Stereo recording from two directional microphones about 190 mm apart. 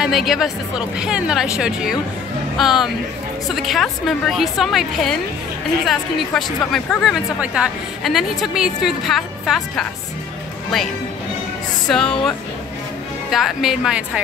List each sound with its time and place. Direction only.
0.0 s a woman's voice: centre (ahead or behind)
11.9 s a woman's voice: 5° left (ahead or behind)